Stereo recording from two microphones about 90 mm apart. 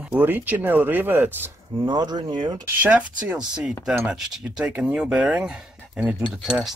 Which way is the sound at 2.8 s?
15° right (ahead or behind).